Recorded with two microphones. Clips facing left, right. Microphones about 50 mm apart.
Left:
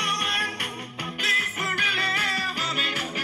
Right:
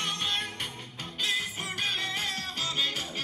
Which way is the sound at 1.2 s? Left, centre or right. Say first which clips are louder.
Left 9 dB; left.